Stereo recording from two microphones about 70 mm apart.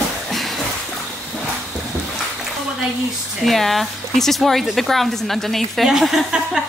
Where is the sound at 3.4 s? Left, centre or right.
Centre.